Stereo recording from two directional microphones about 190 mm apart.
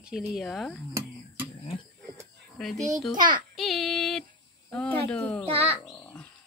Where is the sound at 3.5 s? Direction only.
Centre (ahead or behind).